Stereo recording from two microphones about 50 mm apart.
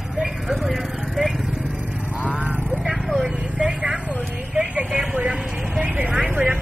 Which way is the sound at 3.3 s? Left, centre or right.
Right.